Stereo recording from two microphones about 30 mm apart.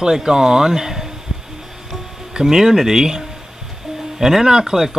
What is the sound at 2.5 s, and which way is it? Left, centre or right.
Speech, centre.